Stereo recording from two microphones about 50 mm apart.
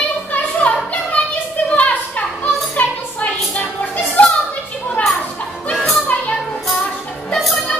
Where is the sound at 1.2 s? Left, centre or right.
Left.